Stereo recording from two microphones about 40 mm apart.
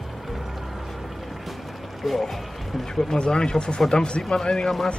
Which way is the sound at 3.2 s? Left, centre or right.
Centre.